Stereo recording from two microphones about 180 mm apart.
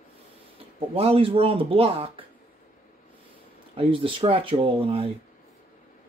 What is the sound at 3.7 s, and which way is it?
Speech, 30° right (ahead or behind).